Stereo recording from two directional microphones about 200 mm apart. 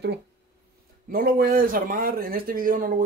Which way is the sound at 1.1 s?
45° right (ahead or behind).